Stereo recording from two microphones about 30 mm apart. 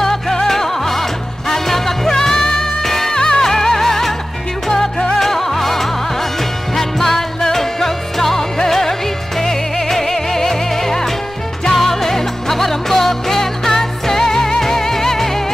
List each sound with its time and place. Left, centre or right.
0.0 s music: centre
3.2 s music: left
5.2 s music: centre